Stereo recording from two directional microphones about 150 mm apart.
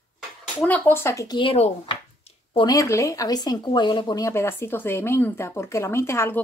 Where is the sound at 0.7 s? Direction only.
15° left (ahead or behind).